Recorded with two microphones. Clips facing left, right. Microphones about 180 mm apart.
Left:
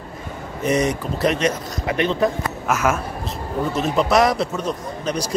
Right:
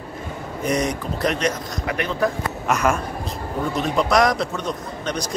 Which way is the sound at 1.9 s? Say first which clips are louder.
Left 3 dB; 25° left (ahead or behind).